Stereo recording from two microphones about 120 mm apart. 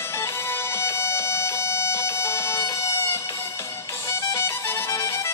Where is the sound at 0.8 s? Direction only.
20° left (ahead or behind).